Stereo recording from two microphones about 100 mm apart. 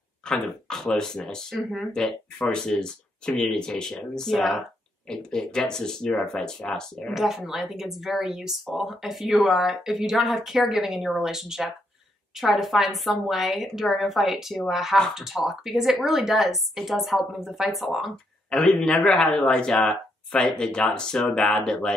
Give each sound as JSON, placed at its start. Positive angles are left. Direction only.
{"t": 0.3, "sound": "speech", "side_deg": 5}
{"t": 7.2, "sound": "speech", "side_deg": -5}